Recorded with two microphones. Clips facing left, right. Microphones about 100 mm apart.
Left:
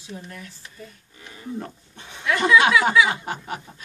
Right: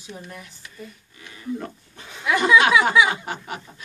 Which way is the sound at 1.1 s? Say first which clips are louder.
Right 2 dB; 30° left (ahead or behind).